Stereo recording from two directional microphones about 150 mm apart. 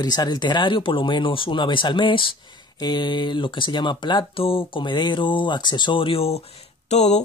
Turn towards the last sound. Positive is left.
turn(degrees=50)  # may be behind; listen again after turning